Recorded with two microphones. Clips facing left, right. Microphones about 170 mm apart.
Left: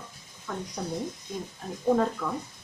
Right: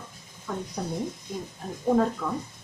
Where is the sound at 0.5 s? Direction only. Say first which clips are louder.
Right 2 dB; 10° right (ahead or behind).